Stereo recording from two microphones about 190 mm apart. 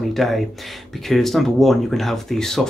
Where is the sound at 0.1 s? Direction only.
Centre (ahead or behind).